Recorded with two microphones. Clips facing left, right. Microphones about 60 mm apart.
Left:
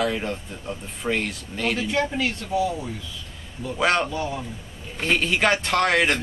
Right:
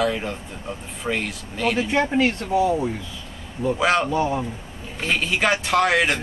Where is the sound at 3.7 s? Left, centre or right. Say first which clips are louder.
Even; centre.